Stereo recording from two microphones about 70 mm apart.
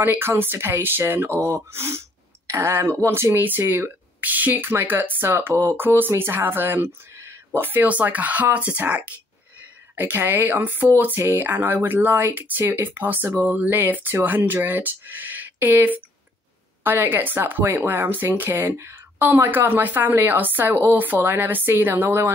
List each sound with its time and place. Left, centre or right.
0.0 s speech: right
7.6 s speech: right
18.8 s a sound: right
19.2 s speech: right